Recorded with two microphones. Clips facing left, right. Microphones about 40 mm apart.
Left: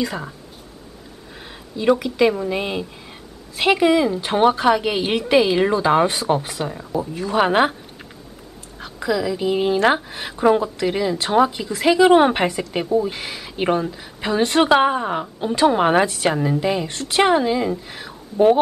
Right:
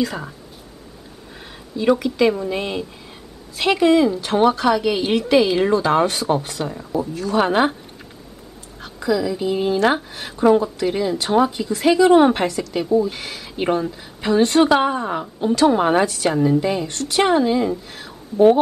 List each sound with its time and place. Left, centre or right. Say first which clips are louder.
1.3 s speech: right 2 dB; centre
4.2 s a woman's voice: even; left
8.7 s a sound: right 1 dB; centre
9.4 s a woman's voice: left 1 dB; left
17.4 s speech: right 2 dB; centre